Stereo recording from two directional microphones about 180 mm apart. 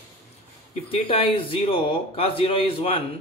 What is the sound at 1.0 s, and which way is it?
Speech, 30° left (ahead or behind).